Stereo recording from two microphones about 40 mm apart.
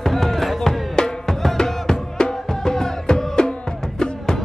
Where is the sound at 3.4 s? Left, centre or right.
Left.